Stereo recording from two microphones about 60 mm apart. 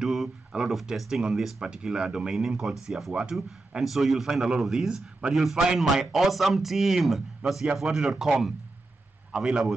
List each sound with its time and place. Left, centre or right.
0.0 s speech: centre